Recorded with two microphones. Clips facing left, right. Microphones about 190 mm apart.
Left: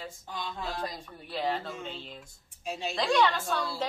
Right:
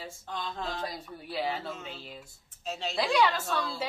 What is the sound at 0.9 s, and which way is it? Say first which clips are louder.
A woman's voice: right 2 dB; 5° right (ahead or behind).